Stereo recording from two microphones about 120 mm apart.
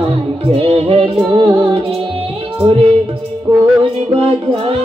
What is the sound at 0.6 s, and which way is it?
Music, 50° right (ahead or behind).